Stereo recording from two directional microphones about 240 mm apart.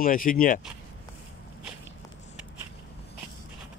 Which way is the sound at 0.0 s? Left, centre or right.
Left.